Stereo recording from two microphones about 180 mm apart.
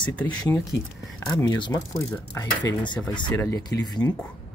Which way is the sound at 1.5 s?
25° left (ahead or behind).